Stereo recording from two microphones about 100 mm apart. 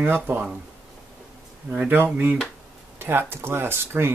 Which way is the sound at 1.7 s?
20° right (ahead or behind).